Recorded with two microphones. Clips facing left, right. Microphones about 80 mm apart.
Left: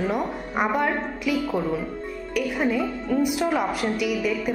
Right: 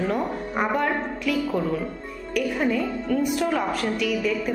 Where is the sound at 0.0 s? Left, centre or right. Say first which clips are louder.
Even; centre.